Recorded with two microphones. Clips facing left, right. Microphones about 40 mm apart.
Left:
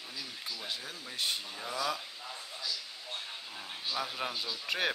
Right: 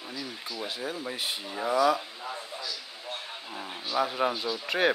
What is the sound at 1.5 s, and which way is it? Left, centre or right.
Speech, right.